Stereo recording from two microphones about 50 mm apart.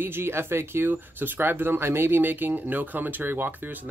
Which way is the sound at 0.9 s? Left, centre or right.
Right.